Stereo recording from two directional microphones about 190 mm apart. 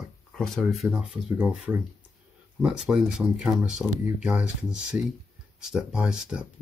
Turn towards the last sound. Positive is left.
turn(degrees=-5)  # may be behind; listen again after turning